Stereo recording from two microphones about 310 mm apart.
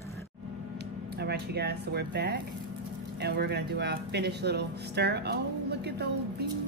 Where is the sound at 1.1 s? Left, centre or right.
Right.